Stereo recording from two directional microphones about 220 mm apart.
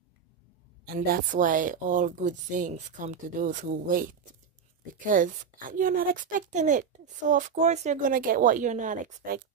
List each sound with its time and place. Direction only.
0.8 s a woman's voice: 40° right (ahead or behind)